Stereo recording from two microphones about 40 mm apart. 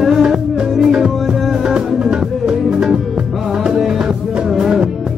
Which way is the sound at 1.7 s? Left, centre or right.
Centre.